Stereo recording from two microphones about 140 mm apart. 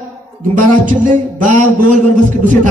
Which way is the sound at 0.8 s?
70° right (ahead or behind).